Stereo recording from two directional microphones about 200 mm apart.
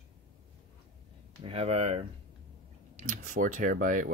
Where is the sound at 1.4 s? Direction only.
30° right (ahead or behind).